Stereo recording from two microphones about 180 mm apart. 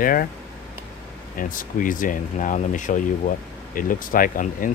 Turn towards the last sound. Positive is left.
turn(degrees=50)  # may be behind; listen again after turning